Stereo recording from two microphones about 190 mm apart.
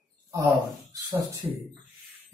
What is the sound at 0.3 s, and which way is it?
Speech, 15° right (ahead or behind).